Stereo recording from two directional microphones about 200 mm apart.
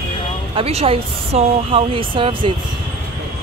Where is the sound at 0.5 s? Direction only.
30° right (ahead or behind).